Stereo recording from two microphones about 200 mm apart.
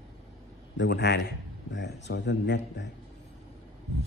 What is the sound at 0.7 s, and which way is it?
A man's voice, 60° left (ahead or behind).